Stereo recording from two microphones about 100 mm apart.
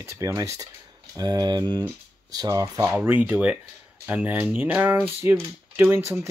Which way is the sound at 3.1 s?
20° right (ahead or behind).